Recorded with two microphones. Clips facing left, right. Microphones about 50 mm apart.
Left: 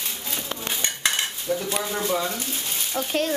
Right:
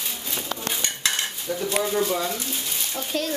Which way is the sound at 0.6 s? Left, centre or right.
Left.